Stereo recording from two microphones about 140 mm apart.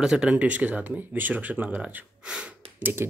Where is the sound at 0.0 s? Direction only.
5° right (ahead or behind).